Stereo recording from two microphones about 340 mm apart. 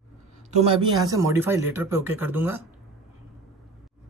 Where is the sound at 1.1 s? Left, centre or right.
Centre.